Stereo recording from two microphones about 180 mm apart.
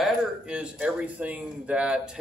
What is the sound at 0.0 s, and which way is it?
Speech, 5° right (ahead or behind).